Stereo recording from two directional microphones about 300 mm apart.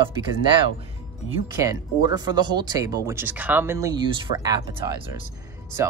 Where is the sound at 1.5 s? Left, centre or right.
Centre.